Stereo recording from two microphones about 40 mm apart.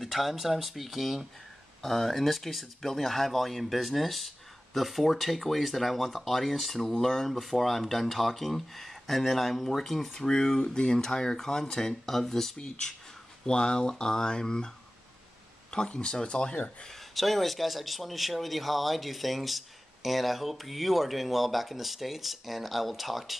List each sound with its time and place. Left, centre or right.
0.0 s speech: centre
1.8 s speech: centre
10.1 s speech: centre
15.7 s speech: left
17.1 s speech: centre